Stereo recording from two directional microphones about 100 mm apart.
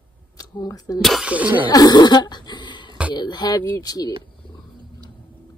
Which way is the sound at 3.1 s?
45° left (ahead or behind).